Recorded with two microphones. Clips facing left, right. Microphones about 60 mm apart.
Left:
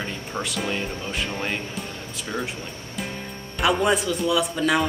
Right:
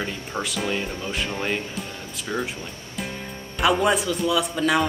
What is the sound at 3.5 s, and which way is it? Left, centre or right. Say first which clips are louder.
Speech: right 1 dB; centre.